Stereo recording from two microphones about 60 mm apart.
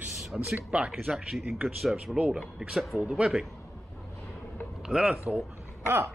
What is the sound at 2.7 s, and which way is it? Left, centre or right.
Speech, centre.